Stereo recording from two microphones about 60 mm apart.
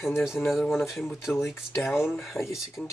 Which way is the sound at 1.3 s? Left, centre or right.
Left.